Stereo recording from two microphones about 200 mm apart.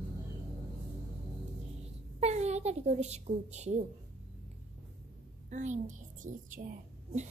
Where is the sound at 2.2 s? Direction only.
35° right (ahead or behind).